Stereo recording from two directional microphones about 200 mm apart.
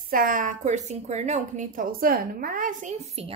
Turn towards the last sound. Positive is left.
turn(degrees=-35)  # may be behind; listen again after turning